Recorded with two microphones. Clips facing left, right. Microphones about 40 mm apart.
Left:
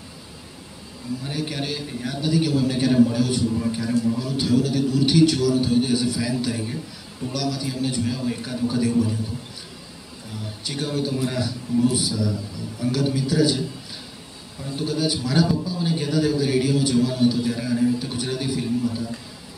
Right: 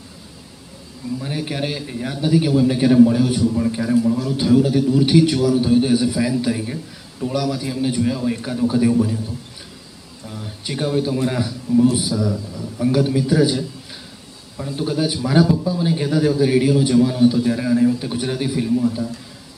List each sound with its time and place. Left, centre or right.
1.2 s a man's voice: centre
10.7 s a man's voice: centre
14.8 s a man's voice: centre